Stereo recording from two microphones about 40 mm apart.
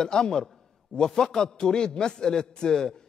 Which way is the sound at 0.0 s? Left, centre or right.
Centre.